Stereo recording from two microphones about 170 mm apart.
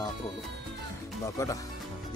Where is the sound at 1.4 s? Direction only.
20° left (ahead or behind).